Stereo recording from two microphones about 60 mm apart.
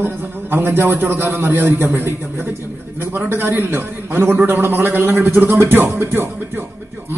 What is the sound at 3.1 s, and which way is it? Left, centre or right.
A man's voice, right.